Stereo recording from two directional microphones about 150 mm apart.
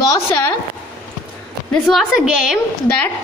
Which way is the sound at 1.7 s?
Centre (ahead or behind).